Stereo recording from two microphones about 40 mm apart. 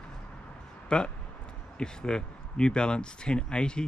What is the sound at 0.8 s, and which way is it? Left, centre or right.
Speech, left.